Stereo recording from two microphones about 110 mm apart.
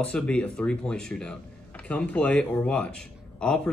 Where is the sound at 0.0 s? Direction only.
10° left (ahead or behind).